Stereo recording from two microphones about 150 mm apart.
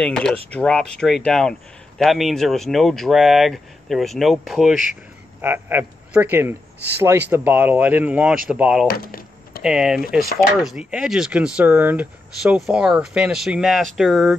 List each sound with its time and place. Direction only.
0.0 s a man's voice: 5° left (ahead or behind)
5.4 s speech: 15° right (ahead or behind)
8.8 s typewriter: 75° left (ahead or behind)
9.6 s a man's voice: 5° right (ahead or behind)